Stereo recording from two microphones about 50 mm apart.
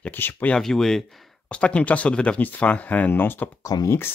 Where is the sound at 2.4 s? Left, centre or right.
Left.